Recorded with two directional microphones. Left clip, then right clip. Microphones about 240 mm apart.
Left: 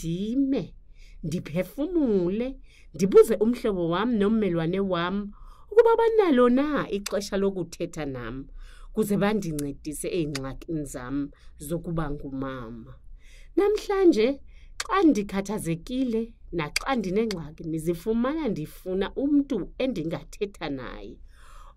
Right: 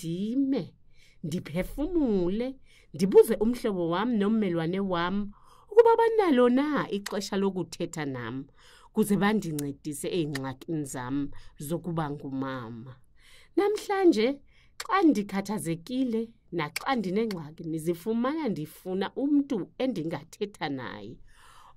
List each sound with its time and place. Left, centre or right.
0.0 s a woman's voice: centre; by 12.9 s right
13.6 s a woman's voice: right